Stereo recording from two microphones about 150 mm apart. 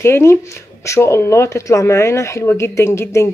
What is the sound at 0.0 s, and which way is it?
Speech, 15° left (ahead or behind).